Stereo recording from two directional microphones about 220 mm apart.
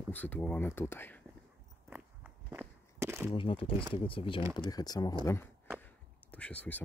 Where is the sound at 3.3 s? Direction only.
25° left (ahead or behind).